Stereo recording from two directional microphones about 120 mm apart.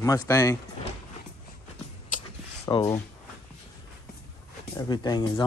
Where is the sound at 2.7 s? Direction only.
30° left (ahead or behind).